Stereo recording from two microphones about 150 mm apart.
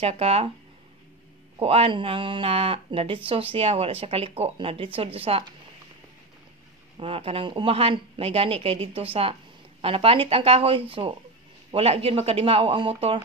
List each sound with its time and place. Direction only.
0.0 s speech: 45° right (ahead or behind)
1.6 s speech: 40° right (ahead or behind)
7.0 s speech: 40° right (ahead or behind)